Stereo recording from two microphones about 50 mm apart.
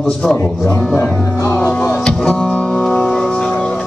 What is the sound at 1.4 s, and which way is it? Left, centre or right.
Music, left.